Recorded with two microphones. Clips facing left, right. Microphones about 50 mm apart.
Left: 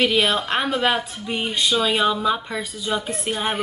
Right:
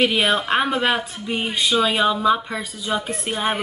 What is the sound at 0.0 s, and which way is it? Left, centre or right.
Speech, centre.